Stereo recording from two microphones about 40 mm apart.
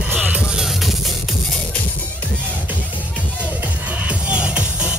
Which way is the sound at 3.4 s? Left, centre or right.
Right.